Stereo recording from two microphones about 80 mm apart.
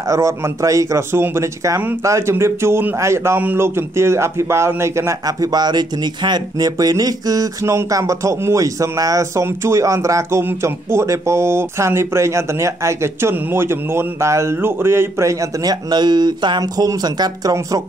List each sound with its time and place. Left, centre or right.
0.1 s a man's voice: right
5.2 s speech: right
7.9 s a man's voice: right
15.6 s speech: right